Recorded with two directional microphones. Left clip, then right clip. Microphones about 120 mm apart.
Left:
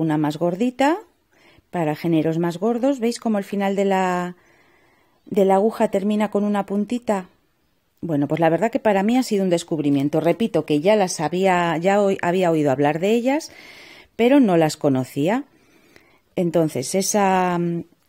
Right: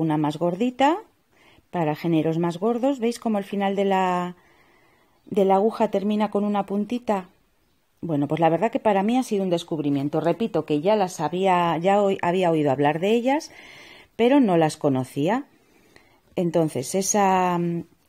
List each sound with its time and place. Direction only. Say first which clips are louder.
0.0 s a woman's voice: left 2 dB; 25° left (ahead or behind)